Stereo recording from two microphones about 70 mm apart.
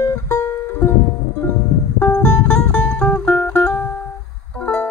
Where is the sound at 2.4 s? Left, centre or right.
Centre.